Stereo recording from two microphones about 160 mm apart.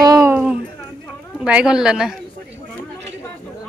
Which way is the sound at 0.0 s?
20° right (ahead or behind).